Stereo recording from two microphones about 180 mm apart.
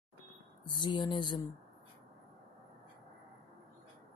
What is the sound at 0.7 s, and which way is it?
Speech, 25° left (ahead or behind).